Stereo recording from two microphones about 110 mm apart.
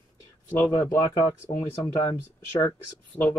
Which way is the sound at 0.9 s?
30° left (ahead or behind).